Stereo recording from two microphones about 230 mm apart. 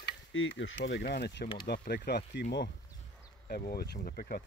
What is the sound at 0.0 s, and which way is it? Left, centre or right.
Speech, left.